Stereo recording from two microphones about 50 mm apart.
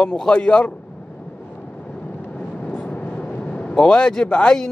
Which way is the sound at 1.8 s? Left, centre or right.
Left.